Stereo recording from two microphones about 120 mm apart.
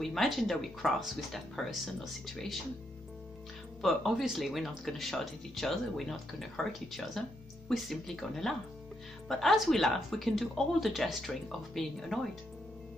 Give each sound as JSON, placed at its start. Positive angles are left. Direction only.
{"t": 0.0, "sound": "speech", "side_deg": 0}
{"t": 3.8, "sound": "speech", "side_deg": 0}